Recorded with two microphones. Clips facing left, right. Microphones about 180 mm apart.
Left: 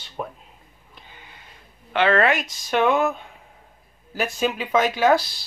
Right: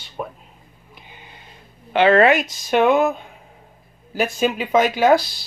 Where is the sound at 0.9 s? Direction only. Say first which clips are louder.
Right 3 dB; 15° right (ahead or behind).